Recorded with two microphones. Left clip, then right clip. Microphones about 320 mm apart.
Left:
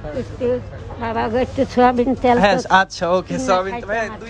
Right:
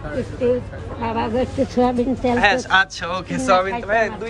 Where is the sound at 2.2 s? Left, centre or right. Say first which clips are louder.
Even; centre.